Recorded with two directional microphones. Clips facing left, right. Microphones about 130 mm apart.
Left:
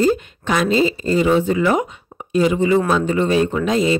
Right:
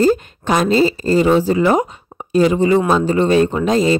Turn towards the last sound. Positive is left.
turn(degrees=-35)  # may be behind; listen again after turning